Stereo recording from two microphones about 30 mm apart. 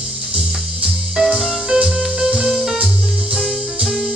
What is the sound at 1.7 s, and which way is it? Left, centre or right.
Music, right.